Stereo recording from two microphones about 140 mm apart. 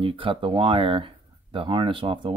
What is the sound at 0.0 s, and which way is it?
Speech, 40° right (ahead or behind).